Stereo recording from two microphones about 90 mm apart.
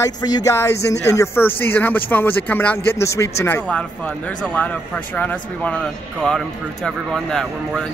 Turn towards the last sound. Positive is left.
turn(degrees=5)  # may be behind; listen again after turning